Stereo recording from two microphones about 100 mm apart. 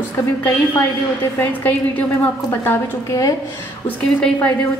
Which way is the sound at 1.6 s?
15° left (ahead or behind).